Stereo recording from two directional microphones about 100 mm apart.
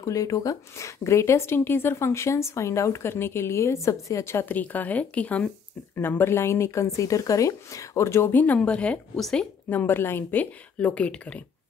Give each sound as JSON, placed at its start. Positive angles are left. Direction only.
{"t": 0.0, "sound": "speech", "side_deg": 35}
{"t": 9.7, "sound": "a woman's voice", "side_deg": 20}